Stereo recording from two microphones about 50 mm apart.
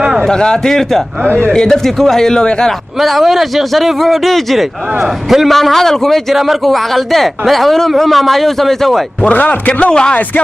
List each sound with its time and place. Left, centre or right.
0.2 s speech: centre
3.0 s a man's voice: centre
9.2 s a man's voice: left